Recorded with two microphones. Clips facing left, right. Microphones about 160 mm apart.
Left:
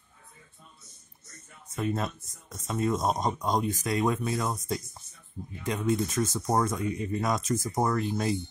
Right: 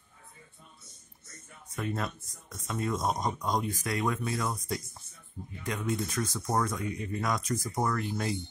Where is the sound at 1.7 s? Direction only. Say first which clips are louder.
Left 4 dB; 20° left (ahead or behind).